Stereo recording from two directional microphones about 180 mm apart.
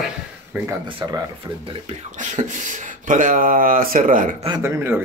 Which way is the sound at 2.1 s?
45° right (ahead or behind).